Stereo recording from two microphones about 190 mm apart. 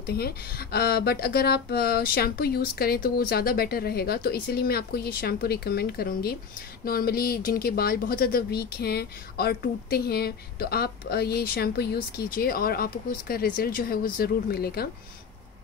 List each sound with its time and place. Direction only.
0.0 s speech: 55° left (ahead or behind)